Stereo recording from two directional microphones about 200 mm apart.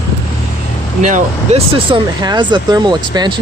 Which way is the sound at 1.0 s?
40° right (ahead or behind).